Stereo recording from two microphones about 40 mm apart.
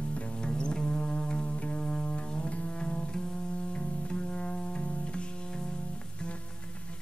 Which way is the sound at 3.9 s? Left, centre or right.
Left.